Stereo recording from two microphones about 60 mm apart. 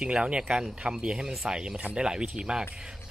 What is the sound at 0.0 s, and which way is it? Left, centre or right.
Speech, centre.